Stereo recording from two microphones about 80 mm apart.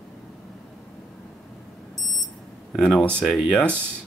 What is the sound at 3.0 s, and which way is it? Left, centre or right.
Speech, centre.